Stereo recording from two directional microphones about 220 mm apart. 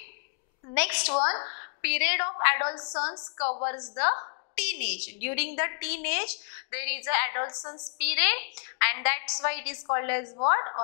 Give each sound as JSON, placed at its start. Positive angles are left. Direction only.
{"t": 0.7, "sound": "a woman's voice", "side_deg": 10}
{"t": 1.1, "sound": "a woman's voice", "side_deg": 25}
{"t": 2.7, "sound": "a woman's voice", "side_deg": 25}
{"t": 8.0, "sound": "a woman's voice", "side_deg": 10}